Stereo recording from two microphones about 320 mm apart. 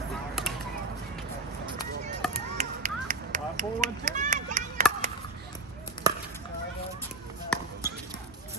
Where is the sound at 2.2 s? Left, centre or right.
Centre.